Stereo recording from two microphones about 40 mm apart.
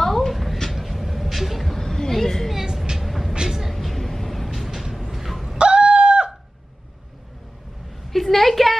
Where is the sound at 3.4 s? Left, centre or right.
Centre.